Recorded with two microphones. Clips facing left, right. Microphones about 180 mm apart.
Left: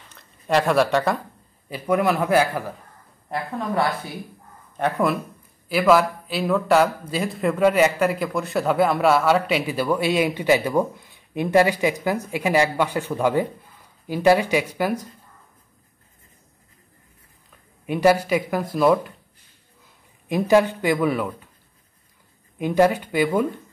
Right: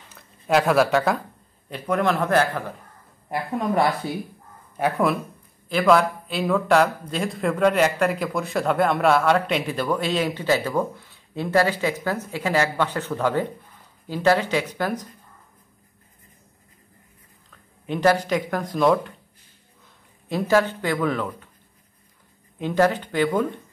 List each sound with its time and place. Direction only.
0.1 s speech: centre (ahead or behind)
3.5 s speech: 25° right (ahead or behind)
4.7 s speech: 5° right (ahead or behind)
17.8 s speech: 10° left (ahead or behind)
20.2 s speech: 15° left (ahead or behind)
22.6 s speech: 10° left (ahead or behind)